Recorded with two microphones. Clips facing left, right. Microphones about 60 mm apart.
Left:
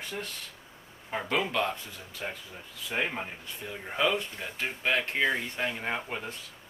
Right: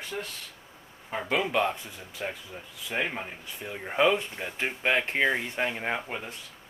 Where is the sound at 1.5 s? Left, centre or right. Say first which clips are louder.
Right 3 dB; centre.